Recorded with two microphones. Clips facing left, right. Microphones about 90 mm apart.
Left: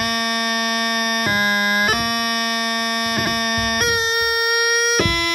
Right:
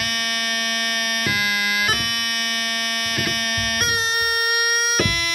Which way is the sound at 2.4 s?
50° left (ahead or behind).